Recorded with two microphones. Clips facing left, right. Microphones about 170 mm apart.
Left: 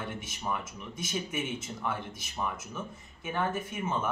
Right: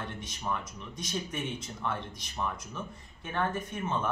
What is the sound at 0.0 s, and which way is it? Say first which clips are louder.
Speech: left 1 dB; 5° left (ahead or behind).